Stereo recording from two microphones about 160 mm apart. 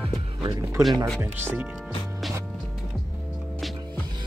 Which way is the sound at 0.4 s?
25° right (ahead or behind).